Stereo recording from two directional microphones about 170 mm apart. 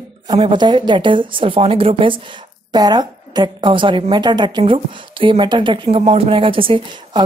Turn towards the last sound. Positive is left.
turn(degrees=-30)  # may be behind; listen again after turning